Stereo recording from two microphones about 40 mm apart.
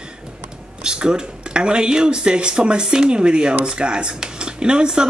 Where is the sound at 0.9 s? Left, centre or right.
Right.